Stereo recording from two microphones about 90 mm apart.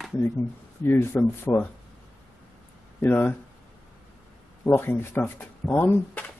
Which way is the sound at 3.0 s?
20° left (ahead or behind).